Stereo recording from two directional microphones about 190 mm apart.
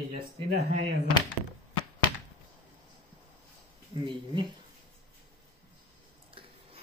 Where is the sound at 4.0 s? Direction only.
25° right (ahead or behind).